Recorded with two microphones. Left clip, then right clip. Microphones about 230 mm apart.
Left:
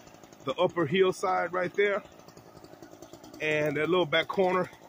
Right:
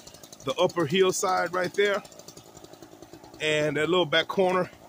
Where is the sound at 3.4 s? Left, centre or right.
Centre.